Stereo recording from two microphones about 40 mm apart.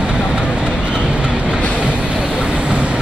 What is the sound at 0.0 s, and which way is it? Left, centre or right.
Vehicle, right.